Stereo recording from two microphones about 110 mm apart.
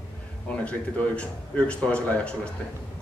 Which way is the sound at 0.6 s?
10° left (ahead or behind).